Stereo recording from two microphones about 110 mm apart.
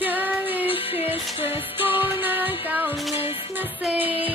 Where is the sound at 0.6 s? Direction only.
55° left (ahead or behind).